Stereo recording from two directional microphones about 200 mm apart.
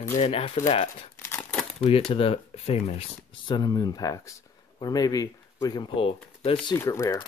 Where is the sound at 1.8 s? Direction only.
30° left (ahead or behind).